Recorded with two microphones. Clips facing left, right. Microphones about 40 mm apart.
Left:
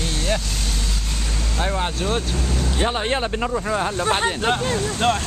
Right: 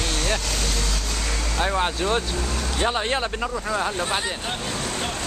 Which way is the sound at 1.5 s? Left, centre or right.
Centre.